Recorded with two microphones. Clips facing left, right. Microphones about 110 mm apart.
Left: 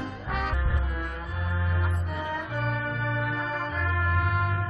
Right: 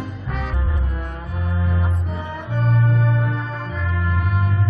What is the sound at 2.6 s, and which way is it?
Music, 30° right (ahead or behind).